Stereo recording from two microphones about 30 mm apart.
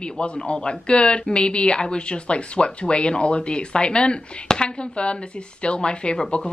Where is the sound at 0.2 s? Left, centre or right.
Left.